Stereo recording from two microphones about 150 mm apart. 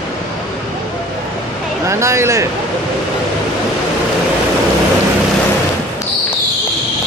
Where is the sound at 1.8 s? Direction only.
20° right (ahead or behind).